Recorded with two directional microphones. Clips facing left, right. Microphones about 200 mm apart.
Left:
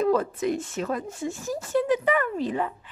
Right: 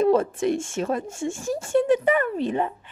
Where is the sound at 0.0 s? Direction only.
25° right (ahead or behind).